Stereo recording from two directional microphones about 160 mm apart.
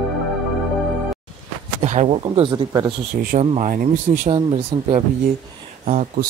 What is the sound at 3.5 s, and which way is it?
Speech, 50° right (ahead or behind).